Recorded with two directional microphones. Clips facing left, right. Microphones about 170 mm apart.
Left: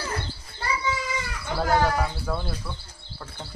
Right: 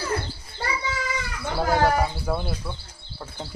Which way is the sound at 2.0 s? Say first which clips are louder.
Right 2 dB; 15° right (ahead or behind).